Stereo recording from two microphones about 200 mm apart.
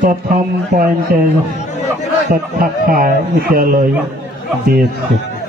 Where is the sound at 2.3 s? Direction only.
45° right (ahead or behind).